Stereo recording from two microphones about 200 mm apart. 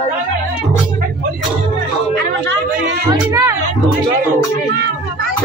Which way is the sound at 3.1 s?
15° right (ahead or behind).